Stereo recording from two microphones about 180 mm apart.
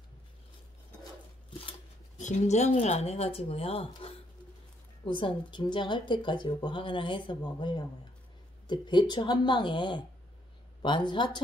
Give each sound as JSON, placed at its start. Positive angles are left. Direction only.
{"t": 2.1, "sound": "a woman's voice", "side_deg": 40}